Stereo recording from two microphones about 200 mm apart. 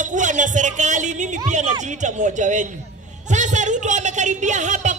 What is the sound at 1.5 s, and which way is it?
A man's voice, 35° right (ahead or behind).